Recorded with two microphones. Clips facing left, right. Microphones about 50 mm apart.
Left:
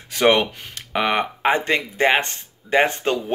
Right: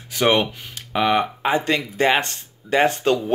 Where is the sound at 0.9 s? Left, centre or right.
Left.